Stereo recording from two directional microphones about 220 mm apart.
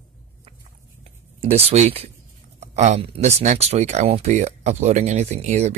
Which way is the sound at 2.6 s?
30° right (ahead or behind).